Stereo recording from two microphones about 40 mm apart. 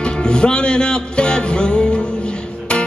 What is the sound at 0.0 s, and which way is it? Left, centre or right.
Music, left.